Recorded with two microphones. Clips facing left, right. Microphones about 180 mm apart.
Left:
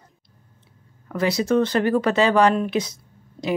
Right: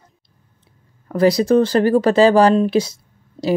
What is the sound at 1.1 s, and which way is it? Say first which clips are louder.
Speech: right 6 dB; 35° right (ahead or behind).